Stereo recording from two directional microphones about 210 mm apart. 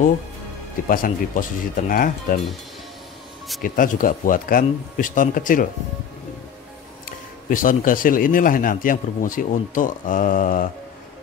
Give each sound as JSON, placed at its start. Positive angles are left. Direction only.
{"t": 0.8, "sound": "speech", "side_deg": 40}
{"t": 3.6, "sound": "speech", "side_deg": 40}
{"t": 7.1, "sound": "speech", "side_deg": 40}